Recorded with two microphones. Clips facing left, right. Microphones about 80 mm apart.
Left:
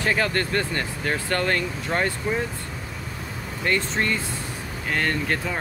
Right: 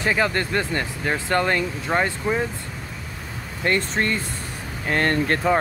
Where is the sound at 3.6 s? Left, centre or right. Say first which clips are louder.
Right 2 dB; right.